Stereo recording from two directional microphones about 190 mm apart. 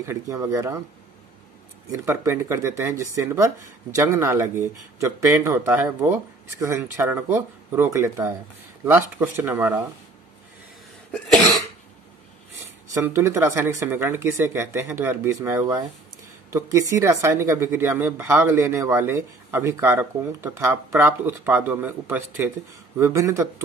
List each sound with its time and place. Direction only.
0.0 s speech: 15° right (ahead or behind)
1.9 s speech: 15° right (ahead or behind)
11.1 s cough: 5° left (ahead or behind)
12.9 s speech: 15° right (ahead or behind)